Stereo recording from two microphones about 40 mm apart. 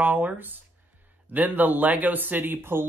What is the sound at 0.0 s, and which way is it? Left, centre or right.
Speech, right.